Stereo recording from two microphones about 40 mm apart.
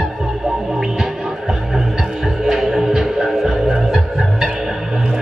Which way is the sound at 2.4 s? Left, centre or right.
Centre.